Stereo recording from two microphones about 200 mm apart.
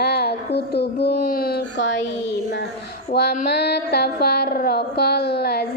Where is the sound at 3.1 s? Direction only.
50° left (ahead or behind).